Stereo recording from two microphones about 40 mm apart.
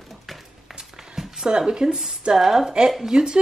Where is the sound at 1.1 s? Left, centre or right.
Centre.